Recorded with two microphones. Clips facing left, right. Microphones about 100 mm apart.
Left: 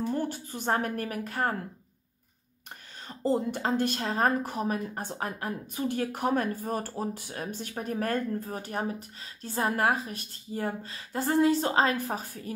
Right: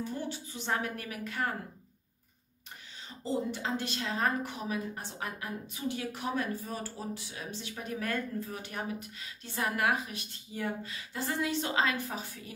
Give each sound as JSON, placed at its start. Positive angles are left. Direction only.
{"t": 0.0, "sound": "speech", "side_deg": 50}
{"t": 3.1, "sound": "speech", "side_deg": 50}